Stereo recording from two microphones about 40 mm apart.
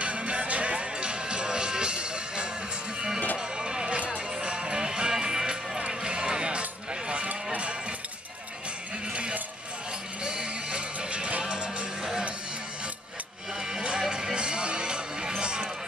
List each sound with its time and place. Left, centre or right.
0.0 s music: right
6.9 s a sound: right
9.1 s a sound: right
10.2 s music: right
11.4 s music: centre
13.7 s music: centre